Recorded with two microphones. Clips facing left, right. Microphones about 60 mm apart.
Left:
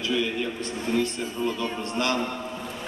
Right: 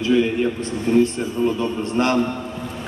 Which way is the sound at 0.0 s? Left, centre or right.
Right.